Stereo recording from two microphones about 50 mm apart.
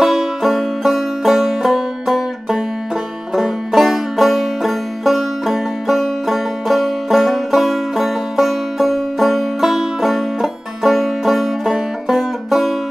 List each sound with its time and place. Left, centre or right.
0.0 s music: centre